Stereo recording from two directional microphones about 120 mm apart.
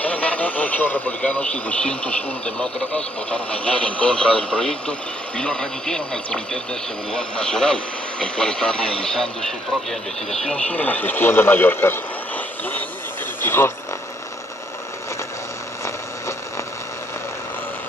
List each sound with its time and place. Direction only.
0.0 s speech: 10° left (ahead or behind)